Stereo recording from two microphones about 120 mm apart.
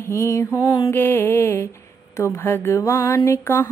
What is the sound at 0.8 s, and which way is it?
Mantra, 15° left (ahead or behind).